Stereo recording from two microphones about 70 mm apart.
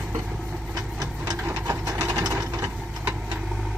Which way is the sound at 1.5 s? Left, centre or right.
Right.